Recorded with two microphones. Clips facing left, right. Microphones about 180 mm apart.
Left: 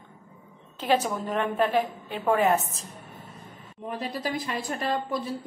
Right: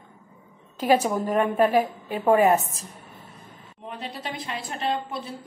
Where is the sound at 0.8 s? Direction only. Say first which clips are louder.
Right 4 dB; 10° right (ahead or behind).